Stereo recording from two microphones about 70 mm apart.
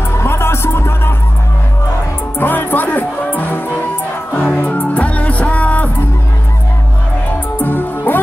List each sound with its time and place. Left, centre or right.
0.2 s music: left
2.3 s music: left
7.5 s music: left